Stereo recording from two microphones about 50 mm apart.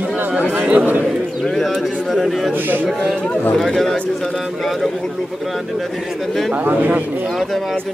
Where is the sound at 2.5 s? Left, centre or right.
Right.